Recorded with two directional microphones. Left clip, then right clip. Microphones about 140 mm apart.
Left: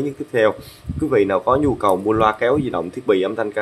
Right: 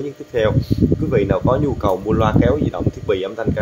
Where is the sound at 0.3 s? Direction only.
15° left (ahead or behind).